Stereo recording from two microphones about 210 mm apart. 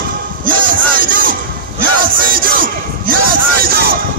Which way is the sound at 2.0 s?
45° right (ahead or behind).